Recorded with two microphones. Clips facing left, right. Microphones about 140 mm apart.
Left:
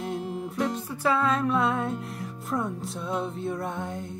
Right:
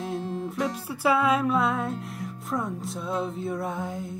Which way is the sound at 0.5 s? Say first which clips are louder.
Even; 5° right (ahead or behind).